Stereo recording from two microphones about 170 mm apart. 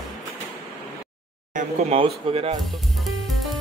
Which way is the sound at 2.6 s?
Centre (ahead or behind).